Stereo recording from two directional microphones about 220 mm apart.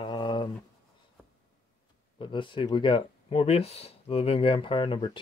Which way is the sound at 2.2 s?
20° left (ahead or behind).